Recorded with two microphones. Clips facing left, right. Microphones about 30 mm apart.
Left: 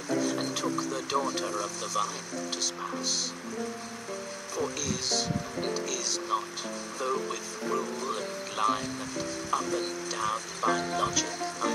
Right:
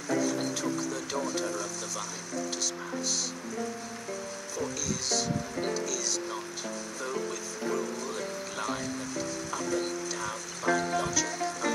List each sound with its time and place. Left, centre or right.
0.1 s speech: centre
5.1 s music: centre
7.7 s speech: centre